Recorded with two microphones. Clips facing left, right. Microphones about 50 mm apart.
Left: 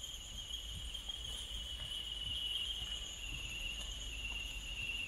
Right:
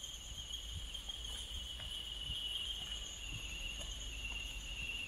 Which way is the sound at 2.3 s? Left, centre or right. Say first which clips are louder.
Left 2 dB; centre.